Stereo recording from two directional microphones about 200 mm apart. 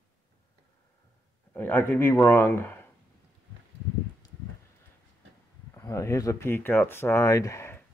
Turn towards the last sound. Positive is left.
turn(degrees=10)  # may be behind; listen again after turning